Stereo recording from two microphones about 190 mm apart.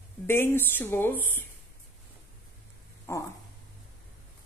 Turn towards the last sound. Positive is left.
turn(degrees=15)  # may be behind; listen again after turning